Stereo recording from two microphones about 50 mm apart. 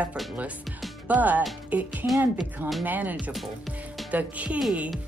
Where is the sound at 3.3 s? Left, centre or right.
Centre.